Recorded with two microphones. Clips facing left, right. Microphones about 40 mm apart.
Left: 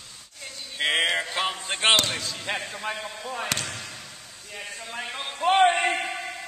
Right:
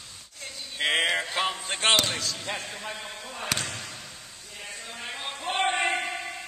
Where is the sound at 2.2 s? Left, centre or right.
Centre.